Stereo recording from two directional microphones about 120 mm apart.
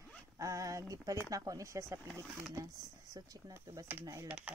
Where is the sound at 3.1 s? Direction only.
25° right (ahead or behind); by 4.5 s 10° right (ahead or behind).